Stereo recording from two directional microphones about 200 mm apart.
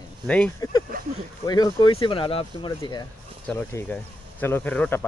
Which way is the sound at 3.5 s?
5° left (ahead or behind).